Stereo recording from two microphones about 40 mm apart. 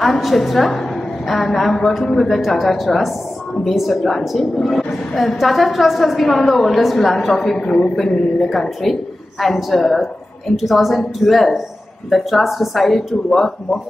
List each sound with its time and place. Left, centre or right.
0.0 s a woman's voice: centre
7.5 s a man's voice: centre
7.9 s a woman's voice: centre